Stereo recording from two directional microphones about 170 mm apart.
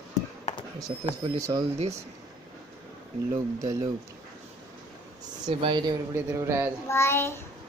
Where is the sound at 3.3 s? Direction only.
20° right (ahead or behind).